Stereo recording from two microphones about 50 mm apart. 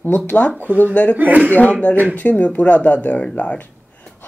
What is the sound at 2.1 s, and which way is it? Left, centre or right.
Speech, left.